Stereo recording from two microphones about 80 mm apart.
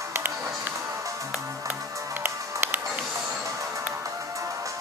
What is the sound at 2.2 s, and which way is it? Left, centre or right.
Music, right.